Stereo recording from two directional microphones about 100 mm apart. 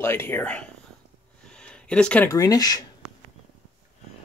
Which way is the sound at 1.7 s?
10° left (ahead or behind).